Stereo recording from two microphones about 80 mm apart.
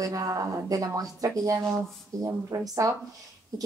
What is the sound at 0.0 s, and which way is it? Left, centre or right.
A woman's voice, right.